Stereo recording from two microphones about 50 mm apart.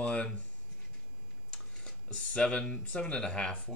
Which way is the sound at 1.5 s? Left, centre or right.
Left.